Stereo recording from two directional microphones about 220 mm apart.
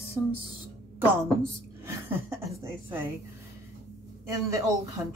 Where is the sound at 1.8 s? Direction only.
10° right (ahead or behind).